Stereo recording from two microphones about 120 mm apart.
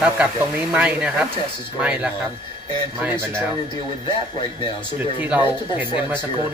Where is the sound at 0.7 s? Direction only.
10° right (ahead or behind).